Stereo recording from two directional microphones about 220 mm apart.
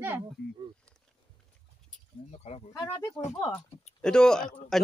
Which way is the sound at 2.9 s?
15° left (ahead or behind).